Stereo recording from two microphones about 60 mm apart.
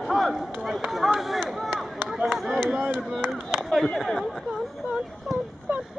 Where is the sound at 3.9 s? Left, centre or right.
Centre.